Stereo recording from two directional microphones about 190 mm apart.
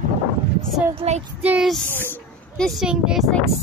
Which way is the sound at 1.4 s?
5° right (ahead or behind).